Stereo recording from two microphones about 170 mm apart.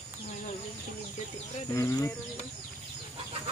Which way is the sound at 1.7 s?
20° left (ahead or behind).